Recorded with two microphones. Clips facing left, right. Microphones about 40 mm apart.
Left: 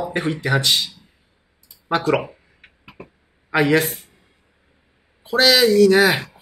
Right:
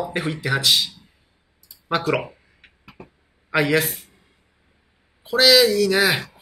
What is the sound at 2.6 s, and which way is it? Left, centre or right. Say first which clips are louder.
Beatboxing: left 2 dB; left.